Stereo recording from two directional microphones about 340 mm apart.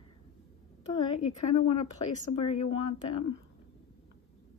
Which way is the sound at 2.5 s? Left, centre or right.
Centre.